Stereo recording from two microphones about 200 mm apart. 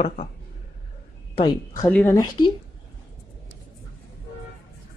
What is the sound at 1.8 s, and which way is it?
Speech, 10° left (ahead or behind).